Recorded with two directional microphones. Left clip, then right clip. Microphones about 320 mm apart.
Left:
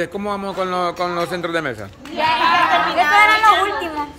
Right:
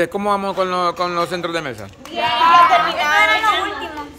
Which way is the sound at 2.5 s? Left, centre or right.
Right.